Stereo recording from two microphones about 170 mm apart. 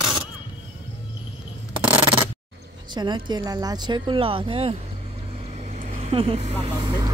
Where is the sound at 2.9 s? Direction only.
25° right (ahead or behind).